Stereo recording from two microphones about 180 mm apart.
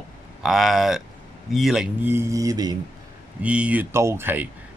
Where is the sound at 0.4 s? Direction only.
Centre (ahead or behind).